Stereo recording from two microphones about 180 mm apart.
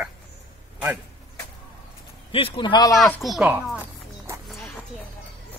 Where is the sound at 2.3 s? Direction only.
30° left (ahead or behind).